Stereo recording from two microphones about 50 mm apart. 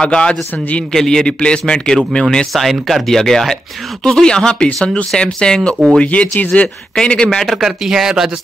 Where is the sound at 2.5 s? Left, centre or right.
Centre.